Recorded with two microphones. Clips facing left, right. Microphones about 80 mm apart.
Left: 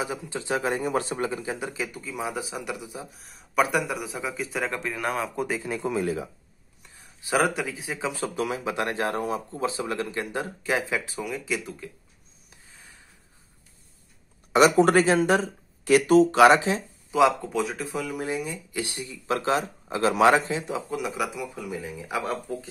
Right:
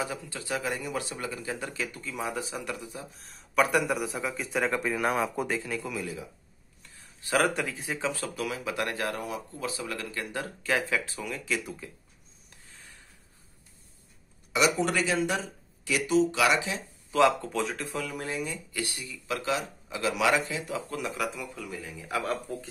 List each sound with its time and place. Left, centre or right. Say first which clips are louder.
0.0 s speech: left 3 dB; left; by 5.6 s centre
5.6 s speech: left 6 dB; left
6.0 s speech: left 9 dB; left
6.8 s a sound: left 1 dB; centre
7.4 s speech: left 2 dB; centre
8.0 s speech: left 5 dB; left
14.5 s speech: left 8 dB; left
17.1 s speech: left 2 dB; centre
18.9 s speech: left 6 dB; left
20.9 s speech: left 4 dB; centre
22.3 s speech: left 2 dB; centre